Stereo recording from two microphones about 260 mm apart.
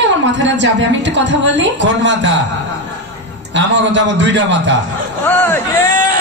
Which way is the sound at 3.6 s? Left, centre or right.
Right.